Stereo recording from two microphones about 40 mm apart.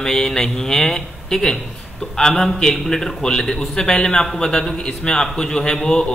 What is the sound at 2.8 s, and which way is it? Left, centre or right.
A man's voice, centre.